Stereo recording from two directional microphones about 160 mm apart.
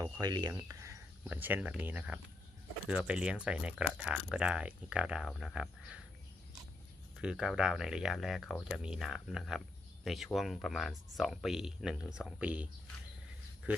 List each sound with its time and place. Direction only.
0.0 s speech: 25° right (ahead or behind); by 5.9 s 5° right (ahead or behind)
7.2 s speech: 5° right (ahead or behind)
13.7 s speech: 10° right (ahead or behind)